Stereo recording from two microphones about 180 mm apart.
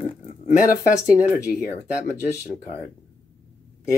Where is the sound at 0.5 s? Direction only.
50° left (ahead or behind).